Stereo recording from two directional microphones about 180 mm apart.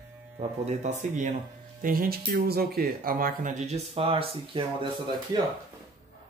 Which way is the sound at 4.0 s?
30° right (ahead or behind).